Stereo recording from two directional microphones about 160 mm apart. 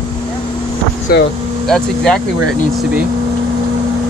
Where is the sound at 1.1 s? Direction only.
75° left (ahead or behind).